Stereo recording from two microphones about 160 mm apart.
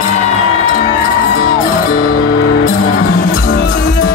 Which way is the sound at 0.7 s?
60° left (ahead or behind).